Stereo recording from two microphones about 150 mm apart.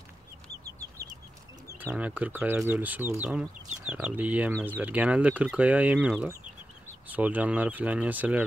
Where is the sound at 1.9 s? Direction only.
10° right (ahead or behind).